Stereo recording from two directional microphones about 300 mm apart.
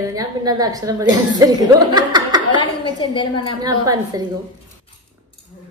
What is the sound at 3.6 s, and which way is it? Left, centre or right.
Speech, centre.